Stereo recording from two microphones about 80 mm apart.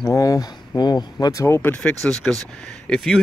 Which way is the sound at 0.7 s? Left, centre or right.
Left.